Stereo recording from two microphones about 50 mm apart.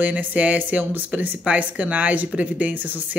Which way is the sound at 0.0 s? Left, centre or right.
Right.